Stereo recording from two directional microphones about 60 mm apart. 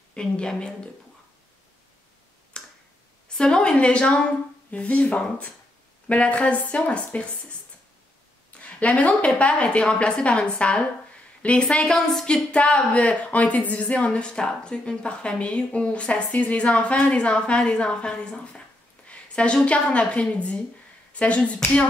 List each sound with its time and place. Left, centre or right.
0.1 s speech: centre
2.6 s finger snapping: centre
3.3 s speech: centre
8.5 s speech: left